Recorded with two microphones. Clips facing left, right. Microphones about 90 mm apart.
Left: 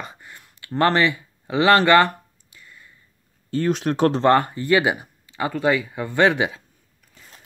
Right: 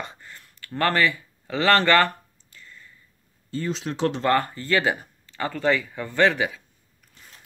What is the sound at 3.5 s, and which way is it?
Speech, 60° left (ahead or behind).